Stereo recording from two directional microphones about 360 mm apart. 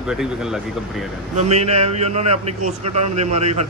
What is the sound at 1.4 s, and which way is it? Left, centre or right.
A man's voice, centre.